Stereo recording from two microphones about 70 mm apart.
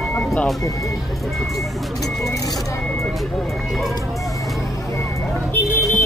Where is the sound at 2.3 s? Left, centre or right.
Left.